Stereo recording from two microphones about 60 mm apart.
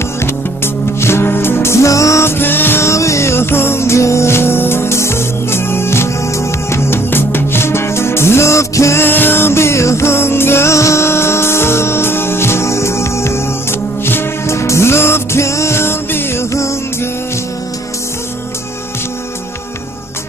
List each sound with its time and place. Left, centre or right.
0.9 s music: left
2.2 s music: left
2.8 s music: left
9.0 s music: left